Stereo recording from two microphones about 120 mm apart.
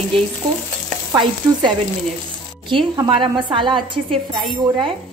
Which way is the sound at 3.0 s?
45° right (ahead or behind).